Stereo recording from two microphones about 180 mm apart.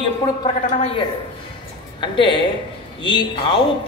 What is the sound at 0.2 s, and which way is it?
Speech, 20° left (ahead or behind).